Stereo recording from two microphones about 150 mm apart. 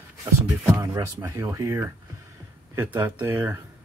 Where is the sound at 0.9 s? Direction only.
25° right (ahead or behind).